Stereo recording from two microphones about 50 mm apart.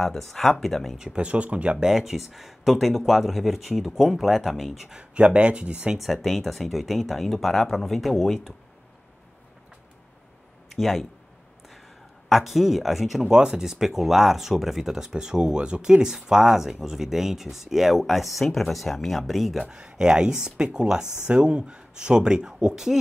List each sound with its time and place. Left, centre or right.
0.0 s speech: centre
0.9 s speech: centre
1.8 s speech: centre
4.9 s speech: right
5.9 s speech: centre
10.8 s speech: centre
12.3 s speech: centre
19.7 s speech: centre